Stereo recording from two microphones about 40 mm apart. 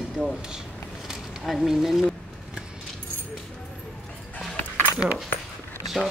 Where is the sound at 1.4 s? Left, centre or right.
Centre.